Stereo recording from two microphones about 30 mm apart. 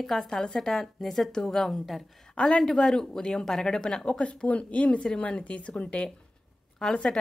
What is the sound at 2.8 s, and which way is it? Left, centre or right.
Speech, centre.